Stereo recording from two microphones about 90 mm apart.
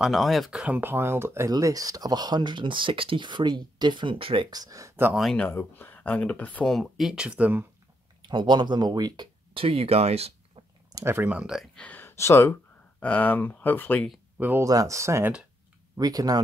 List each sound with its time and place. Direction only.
0.0 s speech: centre (ahead or behind)
0.5 s speech: 10° right (ahead or behind)
0.7 s speech: 25° right (ahead or behind)
1.5 s speech: 40° right (ahead or behind); by 4.5 s 75° right (ahead or behind)
4.5 s speech: 45° right (ahead or behind)
5.5 s speech: 25° left (ahead or behind)
6.6 s speech: centre (ahead or behind); by 7.6 s 15° right (ahead or behind)
8.3 s speech: 60° right (ahead or behind); by 9.8 s 85° right
10.9 s a sound: 45° right (ahead or behind)
11.2 s speech: 15° right (ahead or behind)
11.7 s speech: 15° left (ahead or behind)
13.0 s speech: 15° left (ahead or behind)
14.6 s speech: 40° right (ahead or behind)
16.0 s speech: 45° right (ahead or behind)